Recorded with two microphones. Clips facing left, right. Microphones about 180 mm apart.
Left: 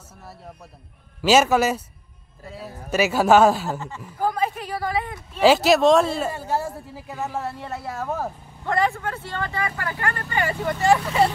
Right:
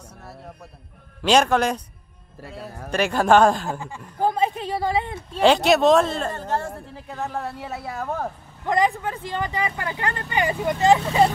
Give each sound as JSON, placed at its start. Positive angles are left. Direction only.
{"t": 1.2, "sound": "a woman's voice", "side_deg": 5}
{"t": 4.2, "sound": "speech", "side_deg": -25}
{"t": 5.4, "sound": "a woman's voice", "side_deg": 5}
{"t": 8.6, "sound": "speech", "side_deg": -15}